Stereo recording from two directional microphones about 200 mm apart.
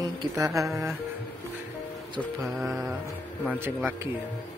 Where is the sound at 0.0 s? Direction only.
20° right (ahead or behind).